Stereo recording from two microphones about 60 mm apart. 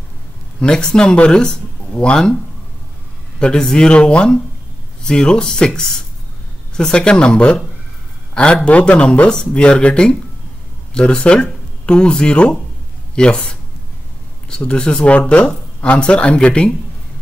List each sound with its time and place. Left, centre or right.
0.6 s speech: centre
3.3 s speech: centre
6.8 s speech: centre
8.6 s speech: left
14.6 s speech: centre